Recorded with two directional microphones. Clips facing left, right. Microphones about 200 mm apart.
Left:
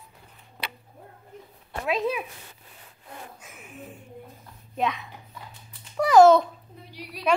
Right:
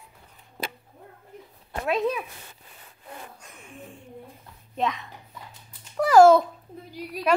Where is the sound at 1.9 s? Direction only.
Centre (ahead or behind).